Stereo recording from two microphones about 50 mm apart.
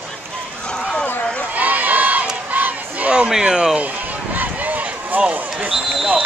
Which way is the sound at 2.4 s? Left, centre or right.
Right.